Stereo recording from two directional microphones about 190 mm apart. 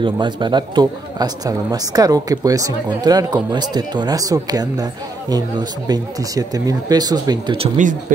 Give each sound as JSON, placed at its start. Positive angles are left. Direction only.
{"t": 0.0, "sound": "speech", "side_deg": -25}